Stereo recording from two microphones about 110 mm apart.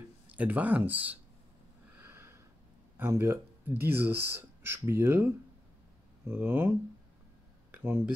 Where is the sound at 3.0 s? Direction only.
25° right (ahead or behind).